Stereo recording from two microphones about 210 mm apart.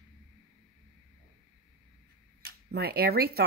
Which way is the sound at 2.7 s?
50° right (ahead or behind).